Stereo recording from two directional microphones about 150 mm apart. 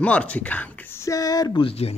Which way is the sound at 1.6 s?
40° left (ahead or behind).